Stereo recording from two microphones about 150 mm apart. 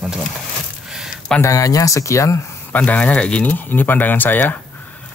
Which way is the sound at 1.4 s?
20° left (ahead or behind).